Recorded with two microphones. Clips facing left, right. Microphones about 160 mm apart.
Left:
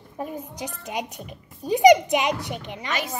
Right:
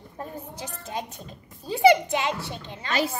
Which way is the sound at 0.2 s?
15° left (ahead or behind).